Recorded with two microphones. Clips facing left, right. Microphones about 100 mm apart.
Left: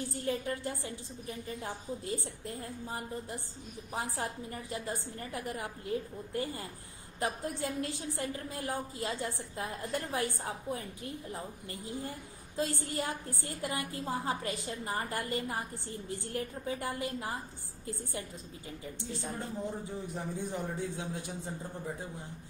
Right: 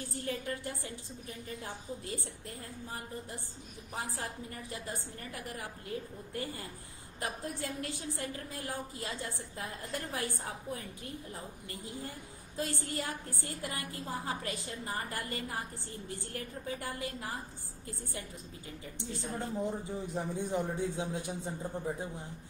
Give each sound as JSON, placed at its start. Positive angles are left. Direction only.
{"t": 0.1, "sound": "a woman's voice", "side_deg": 25}
{"t": 19.3, "sound": "a man's voice", "side_deg": -20}